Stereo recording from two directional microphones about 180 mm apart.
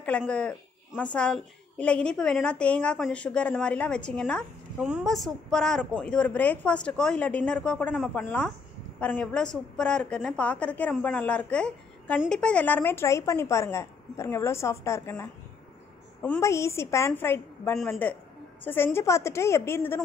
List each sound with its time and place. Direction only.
0.2 s a woman's voice: 5° left (ahead or behind)